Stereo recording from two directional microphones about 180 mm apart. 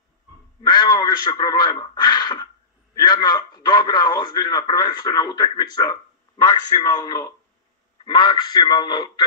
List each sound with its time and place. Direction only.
0.6 s a man's voice: 25° left (ahead or behind)